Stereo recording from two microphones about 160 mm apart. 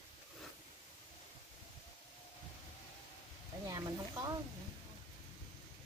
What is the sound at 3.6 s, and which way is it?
Speech, 20° right (ahead or behind).